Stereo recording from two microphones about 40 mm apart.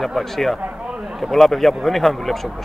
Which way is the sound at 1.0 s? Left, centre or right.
Centre.